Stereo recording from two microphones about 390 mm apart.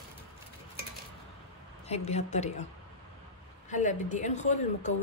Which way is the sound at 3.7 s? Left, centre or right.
Centre.